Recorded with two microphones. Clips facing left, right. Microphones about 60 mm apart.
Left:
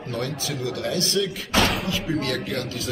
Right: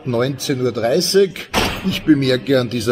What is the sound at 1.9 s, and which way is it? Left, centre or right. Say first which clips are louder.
Speech: right 11 dB; right.